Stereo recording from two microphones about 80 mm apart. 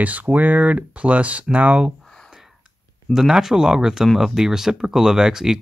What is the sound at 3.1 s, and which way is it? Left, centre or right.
Speech, centre.